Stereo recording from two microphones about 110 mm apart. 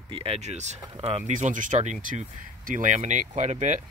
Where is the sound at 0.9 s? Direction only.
75° right (ahead or behind); by 3.7 s 90° right.